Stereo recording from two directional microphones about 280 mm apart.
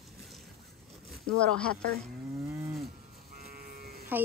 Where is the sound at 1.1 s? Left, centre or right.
Centre.